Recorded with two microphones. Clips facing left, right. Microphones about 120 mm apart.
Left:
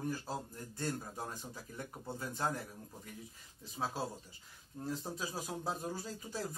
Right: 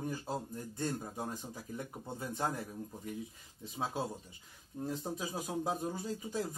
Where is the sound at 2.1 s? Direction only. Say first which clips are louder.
Right 1 dB; 20° right (ahead or behind).